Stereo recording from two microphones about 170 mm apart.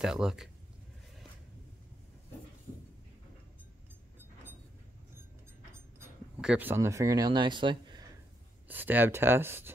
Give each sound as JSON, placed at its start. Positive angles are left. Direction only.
{"t": 0.0, "sound": "speech", "side_deg": -5}
{"t": 6.4, "sound": "speech", "side_deg": -10}
{"t": 8.6, "sound": "speech", "side_deg": -10}